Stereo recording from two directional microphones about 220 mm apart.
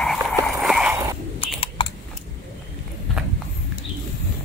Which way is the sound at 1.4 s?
25° left (ahead or behind).